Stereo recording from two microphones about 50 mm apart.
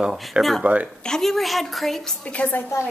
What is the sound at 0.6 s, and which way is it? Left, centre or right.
Speech, right.